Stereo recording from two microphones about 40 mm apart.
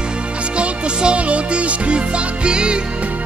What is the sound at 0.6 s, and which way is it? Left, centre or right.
Music, right.